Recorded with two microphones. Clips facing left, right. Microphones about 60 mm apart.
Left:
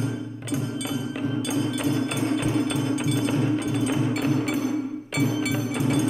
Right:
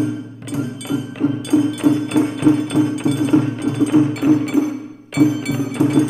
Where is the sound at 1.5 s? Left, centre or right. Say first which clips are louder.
Right 13 dB; right.